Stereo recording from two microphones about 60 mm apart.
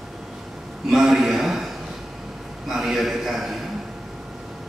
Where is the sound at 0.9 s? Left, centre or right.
Centre.